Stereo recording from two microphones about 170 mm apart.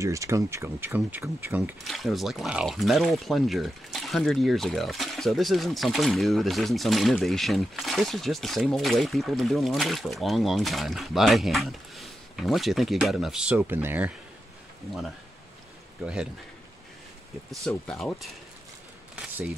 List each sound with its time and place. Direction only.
0.0 s speech: 20° right (ahead or behind)
1.9 s speech: centre (ahead or behind)
17.6 s speech: 5° left (ahead or behind)